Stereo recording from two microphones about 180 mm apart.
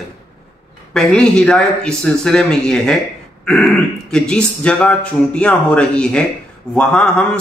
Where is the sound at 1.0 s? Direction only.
5° left (ahead or behind).